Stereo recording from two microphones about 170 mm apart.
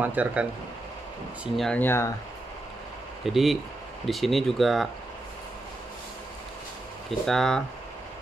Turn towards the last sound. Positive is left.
turn(degrees=5)  # may be behind; listen again after turning